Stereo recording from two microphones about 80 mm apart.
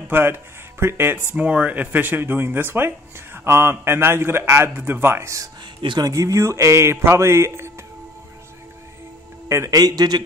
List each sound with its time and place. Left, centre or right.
0.1 s a man's voice: right
5.8 s speech: right
6.0 s a man's voice: right
9.7 s a man's voice: right